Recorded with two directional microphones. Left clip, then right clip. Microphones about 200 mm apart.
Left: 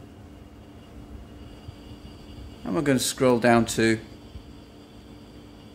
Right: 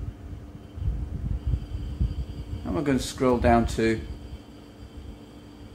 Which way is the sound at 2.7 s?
50° left (ahead or behind).